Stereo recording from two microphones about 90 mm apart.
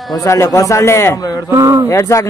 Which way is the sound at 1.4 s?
35° right (ahead or behind).